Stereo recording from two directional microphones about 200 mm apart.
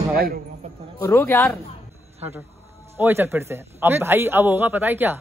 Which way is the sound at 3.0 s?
10° right (ahead or behind).